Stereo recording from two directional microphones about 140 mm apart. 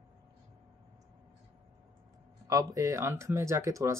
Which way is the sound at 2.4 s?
25° right (ahead or behind).